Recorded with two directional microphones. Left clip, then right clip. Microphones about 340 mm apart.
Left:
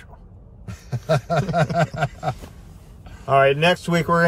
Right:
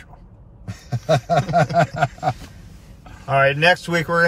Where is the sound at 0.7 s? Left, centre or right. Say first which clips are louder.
Right 3 dB; centre.